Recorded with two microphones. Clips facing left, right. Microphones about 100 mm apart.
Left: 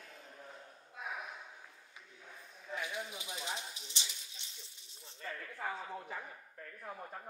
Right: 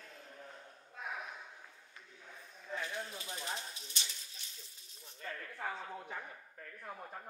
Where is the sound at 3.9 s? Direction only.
20° left (ahead or behind).